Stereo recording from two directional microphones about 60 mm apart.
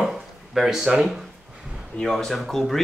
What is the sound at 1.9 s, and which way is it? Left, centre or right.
Speech, centre.